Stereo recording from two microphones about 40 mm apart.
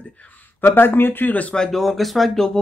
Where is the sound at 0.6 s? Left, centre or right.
Left.